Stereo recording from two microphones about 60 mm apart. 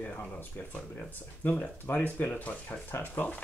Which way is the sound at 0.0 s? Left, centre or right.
Left.